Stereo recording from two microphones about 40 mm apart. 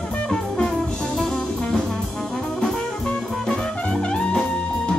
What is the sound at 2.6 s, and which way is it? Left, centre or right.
Music, left.